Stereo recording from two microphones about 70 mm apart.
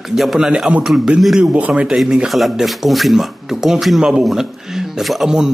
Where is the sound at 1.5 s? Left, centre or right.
Centre.